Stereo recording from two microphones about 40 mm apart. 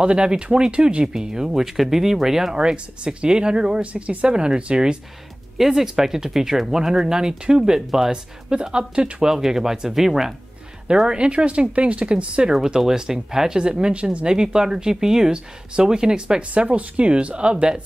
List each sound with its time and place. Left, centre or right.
0.0 s speech: right
1.0 s speech: centre
3.8 s speech: right
5.6 s speech: centre
9.3 s speech: centre
11.1 s speech: right
14.3 s speech: centre